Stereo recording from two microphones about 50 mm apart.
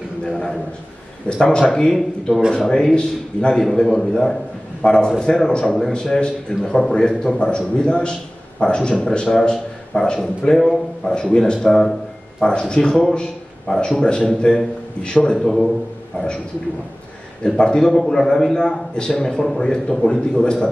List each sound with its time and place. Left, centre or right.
0.3 s a man's voice: centre
3.5 s a man's voice: centre
11.2 s a man's voice: centre
15.3 s a man's voice: centre
17.6 s a man's voice: centre